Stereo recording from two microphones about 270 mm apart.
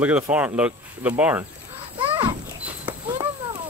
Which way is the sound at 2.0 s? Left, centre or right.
Centre.